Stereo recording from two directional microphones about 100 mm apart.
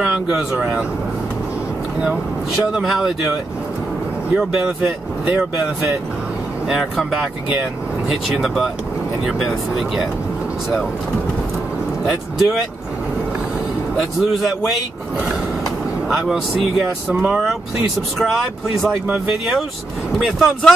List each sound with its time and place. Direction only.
0.0 s speech: 10° right (ahead or behind)
2.7 s speech: centre (ahead or behind)
4.4 s speech: 10° right (ahead or behind)
6.7 s speech: centre (ahead or behind)
12.1 s speech: 5° right (ahead or behind)
13.9 s speech: centre (ahead or behind)
17.1 s speech: 15° right (ahead or behind)
18.2 s speech: centre (ahead or behind)